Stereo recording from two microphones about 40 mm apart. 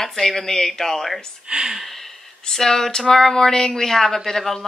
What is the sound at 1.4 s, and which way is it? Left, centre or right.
Speech, right.